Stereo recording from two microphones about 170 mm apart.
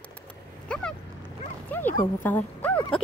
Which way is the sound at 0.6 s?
5° left (ahead or behind).